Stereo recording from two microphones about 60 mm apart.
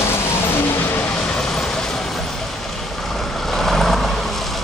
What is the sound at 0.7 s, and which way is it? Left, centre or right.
Vehicle, left.